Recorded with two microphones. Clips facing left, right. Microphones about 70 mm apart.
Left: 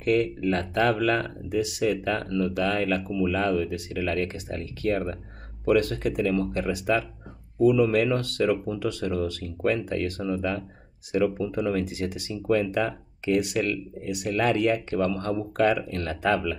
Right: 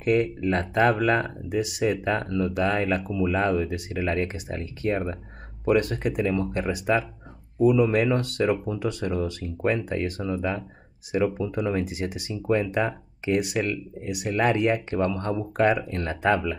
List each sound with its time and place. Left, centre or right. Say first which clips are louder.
0.0 s speech: right 1 dB; right